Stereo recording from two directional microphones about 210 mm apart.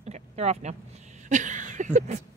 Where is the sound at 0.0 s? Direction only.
30° right (ahead or behind).